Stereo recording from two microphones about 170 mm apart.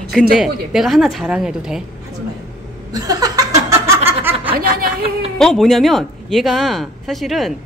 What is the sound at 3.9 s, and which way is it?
Snicker, 15° right (ahead or behind).